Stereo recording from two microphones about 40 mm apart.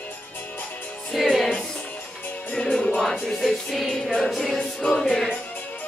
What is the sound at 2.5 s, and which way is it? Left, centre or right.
Music, left.